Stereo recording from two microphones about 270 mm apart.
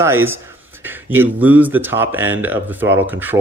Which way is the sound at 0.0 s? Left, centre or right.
Centre.